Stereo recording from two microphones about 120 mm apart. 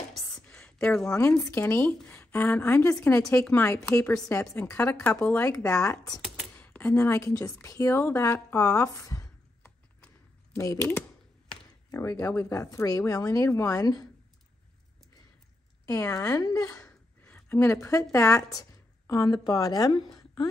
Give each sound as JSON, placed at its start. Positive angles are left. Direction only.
{"t": 0.1, "sound": "a sound", "side_deg": 5}
{"t": 1.4, "sound": "a woman's voice", "side_deg": 20}
{"t": 5.5, "sound": "speech", "side_deg": 25}
{"t": 6.6, "sound": "a sound", "side_deg": 10}
{"t": 7.0, "sound": "speech", "side_deg": 25}
{"t": 10.8, "sound": "a woman's voice", "side_deg": 15}
{"t": 11.9, "sound": "speech", "side_deg": 25}
{"t": 15.8, "sound": "speech", "side_deg": 25}
{"t": 16.8, "sound": "a sound", "side_deg": 15}
{"t": 18.1, "sound": "a woman's voice", "side_deg": 25}